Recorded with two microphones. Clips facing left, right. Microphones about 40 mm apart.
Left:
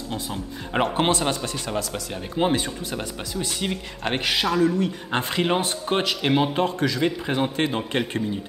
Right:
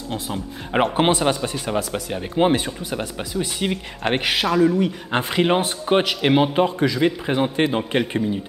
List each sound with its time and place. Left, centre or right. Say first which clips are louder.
0.1 s speech: right 4 dB; centre